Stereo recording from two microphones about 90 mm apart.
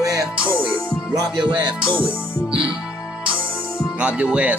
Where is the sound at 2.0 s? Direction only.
70° right (ahead or behind).